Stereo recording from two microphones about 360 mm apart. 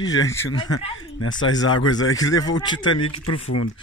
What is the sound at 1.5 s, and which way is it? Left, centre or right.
Speech, left.